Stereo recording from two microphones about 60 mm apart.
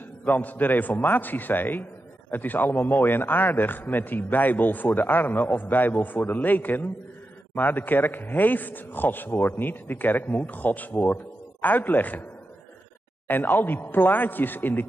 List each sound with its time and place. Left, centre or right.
0.2 s a man's voice: left
13.3 s a man's voice: left